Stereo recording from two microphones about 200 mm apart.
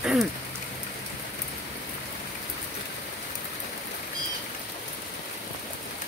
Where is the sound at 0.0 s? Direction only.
5° right (ahead or behind).